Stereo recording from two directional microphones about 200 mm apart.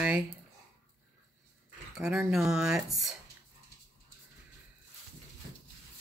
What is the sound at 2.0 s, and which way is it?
Speech, 5° right (ahead or behind).